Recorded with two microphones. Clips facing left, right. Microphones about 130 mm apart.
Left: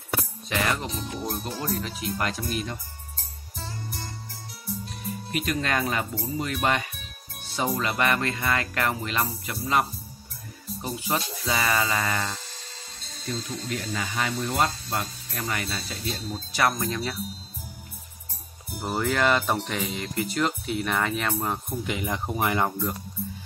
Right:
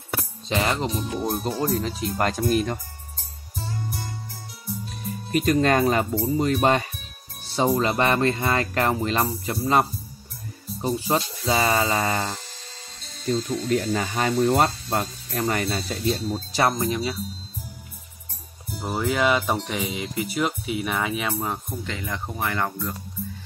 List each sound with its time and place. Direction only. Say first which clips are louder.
0.5 s speech: right 4 dB; 25° right (ahead or behind)
1.3 s speech: right 7 dB; 35° right (ahead or behind)
5.3 s speech: right 8 dB; 35° right (ahead or behind)
16.3 s speech: left 1 dB; 30° right (ahead or behind)
16.7 s speech: right 4 dB; 15° right (ahead or behind)
18.8 s speech: right 1 dB; centre (ahead or behind)
21.8 s speech: left 5 dB; 15° left (ahead or behind)